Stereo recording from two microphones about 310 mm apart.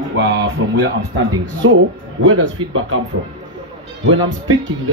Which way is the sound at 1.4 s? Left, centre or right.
Right.